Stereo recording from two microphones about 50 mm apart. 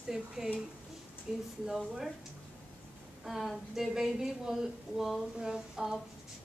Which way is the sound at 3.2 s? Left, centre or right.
Centre.